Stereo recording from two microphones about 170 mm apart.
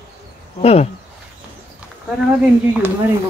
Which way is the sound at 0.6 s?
40° left (ahead or behind).